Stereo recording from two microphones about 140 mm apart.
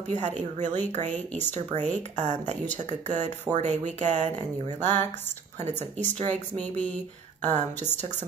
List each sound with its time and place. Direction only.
0.1 s speech: 55° right (ahead or behind)
4.7 s a sound: 15° left (ahead or behind)
5.6 s speech: 55° right (ahead or behind)
7.4 s speech: 55° right (ahead or behind)